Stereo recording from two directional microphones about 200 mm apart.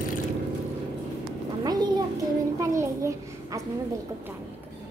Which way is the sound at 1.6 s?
20° right (ahead or behind).